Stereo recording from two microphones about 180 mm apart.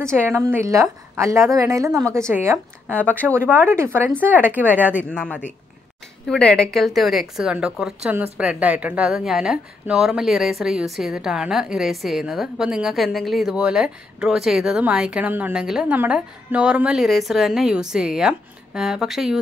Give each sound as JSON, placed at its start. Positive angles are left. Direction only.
{"t": 0.0, "sound": "speech", "side_deg": -15}
{"t": 2.9, "sound": "a man's voice", "side_deg": 10}
{"t": 3.3, "sound": "speech", "side_deg": -10}
{"t": 4.9, "sound": "a man's voice", "side_deg": 5}